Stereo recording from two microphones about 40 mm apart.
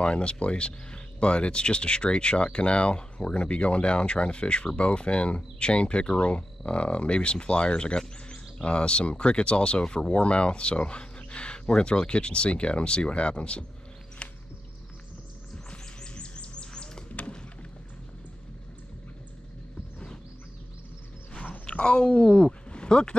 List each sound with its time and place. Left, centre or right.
0.0 s speech: left
14.2 s music: left
15.5 s bird: left
21.6 s speech: left